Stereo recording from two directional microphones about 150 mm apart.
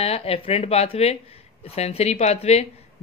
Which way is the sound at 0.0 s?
40° left (ahead or behind).